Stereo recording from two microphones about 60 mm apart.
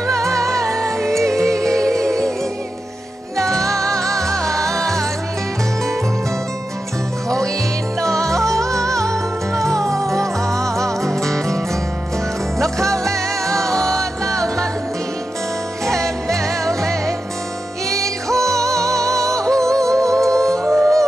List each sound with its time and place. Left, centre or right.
0.3 s music: centre
8.0 s music: centre
8.5 s music: right
9.6 s music: centre
10.5 s music: right
11.0 s music: centre
12.8 s music: centre
13.7 s music: right
14.3 s music: centre
16.3 s music: centre
18.8 s music: right
19.3 s music: centre